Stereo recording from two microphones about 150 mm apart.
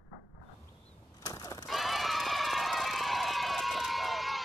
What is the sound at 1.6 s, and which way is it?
Crowd, centre (ahead or behind).